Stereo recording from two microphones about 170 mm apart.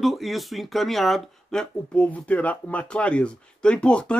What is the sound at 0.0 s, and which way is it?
Speech, centre (ahead or behind).